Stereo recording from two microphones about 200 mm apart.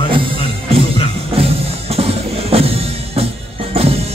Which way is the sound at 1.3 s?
30° right (ahead or behind).